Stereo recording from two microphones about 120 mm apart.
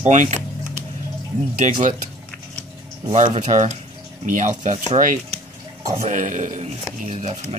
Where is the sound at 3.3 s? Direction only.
80° right.